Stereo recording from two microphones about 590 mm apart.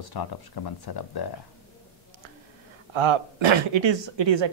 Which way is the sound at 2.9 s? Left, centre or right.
Right.